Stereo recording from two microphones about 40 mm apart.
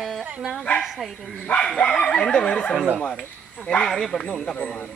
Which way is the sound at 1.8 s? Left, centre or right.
Left.